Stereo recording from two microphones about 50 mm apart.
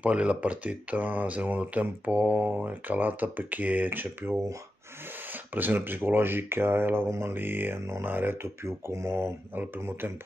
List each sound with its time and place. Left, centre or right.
0.0 s speech: right
5.5 s speech: right
7.1 s speech: right
7.3 s speech: right
8.6 s speech: right
9.1 s speech: right